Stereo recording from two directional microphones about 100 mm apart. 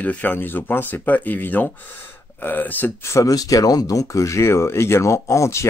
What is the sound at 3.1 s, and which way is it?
Speech, 35° left (ahead or behind).